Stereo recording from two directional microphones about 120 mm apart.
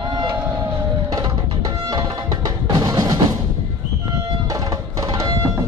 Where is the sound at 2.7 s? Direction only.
35° right (ahead or behind).